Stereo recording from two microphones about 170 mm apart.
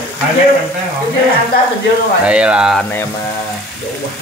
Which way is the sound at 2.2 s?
5° right (ahead or behind).